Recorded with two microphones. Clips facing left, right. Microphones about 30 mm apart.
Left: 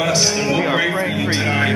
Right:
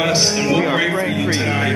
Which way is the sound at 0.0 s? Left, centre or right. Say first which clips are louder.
Right 1 dB; centre.